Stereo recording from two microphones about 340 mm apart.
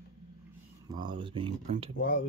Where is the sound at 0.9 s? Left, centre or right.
Centre.